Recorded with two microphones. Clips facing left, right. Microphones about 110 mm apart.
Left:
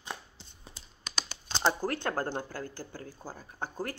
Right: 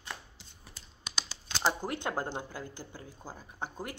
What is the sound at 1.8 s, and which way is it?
A woman's voice, 15° right (ahead or behind).